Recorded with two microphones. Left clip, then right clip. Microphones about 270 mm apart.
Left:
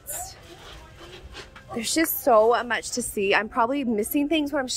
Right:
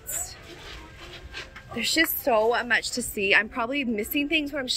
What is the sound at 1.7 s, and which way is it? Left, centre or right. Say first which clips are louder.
A woman's voice: right 1 dB; centre.